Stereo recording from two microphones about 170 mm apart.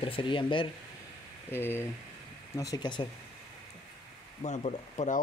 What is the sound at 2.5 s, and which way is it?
Speech, 25° left (ahead or behind).